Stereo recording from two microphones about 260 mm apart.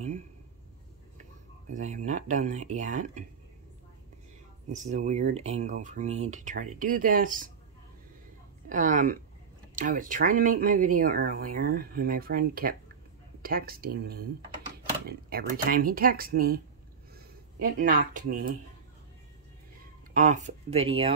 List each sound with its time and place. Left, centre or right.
1.7 s speech: right
4.7 s speech: right
8.6 s speech: right
20.2 s speech: right